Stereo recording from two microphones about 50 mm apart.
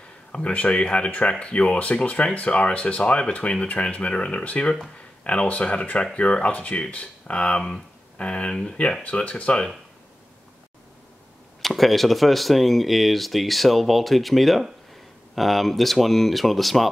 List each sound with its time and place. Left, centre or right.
0.3 s speech: left
4.9 s a sound: left
5.5 s speech: left
11.6 s speech: centre